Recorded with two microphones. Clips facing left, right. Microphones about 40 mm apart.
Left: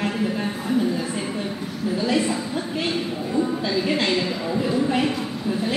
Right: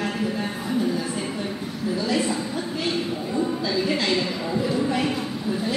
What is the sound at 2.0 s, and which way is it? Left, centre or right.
Speech, left.